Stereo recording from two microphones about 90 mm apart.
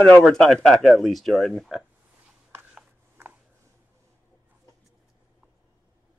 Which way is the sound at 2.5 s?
20° right (ahead or behind).